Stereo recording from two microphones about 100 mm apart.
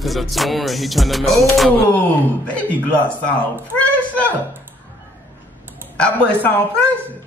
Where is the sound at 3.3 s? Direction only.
15° left (ahead or behind).